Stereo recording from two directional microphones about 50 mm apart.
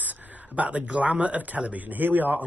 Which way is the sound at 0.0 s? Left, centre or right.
Right.